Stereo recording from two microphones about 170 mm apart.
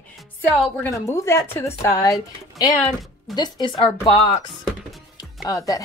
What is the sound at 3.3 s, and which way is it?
Speech, 25° left (ahead or behind).